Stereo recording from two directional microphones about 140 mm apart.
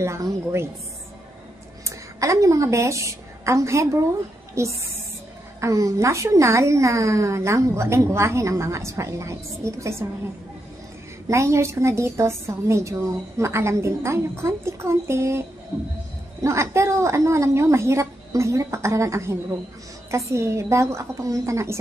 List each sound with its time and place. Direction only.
0.0 s a woman's voice: 20° right (ahead or behind)
1.9 s a woman's voice: 20° right (ahead or behind)
11.2 s a woman's voice: 20° right (ahead or behind)
16.4 s a woman's voice: 20° right (ahead or behind)